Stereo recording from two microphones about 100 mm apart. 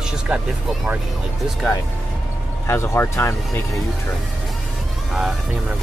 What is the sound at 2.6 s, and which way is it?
Speech, 25° left (ahead or behind).